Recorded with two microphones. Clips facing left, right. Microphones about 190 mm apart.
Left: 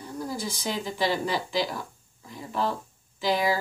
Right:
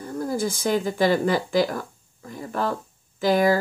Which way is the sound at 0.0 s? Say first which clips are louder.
Right 7 dB; 50° right (ahead or behind).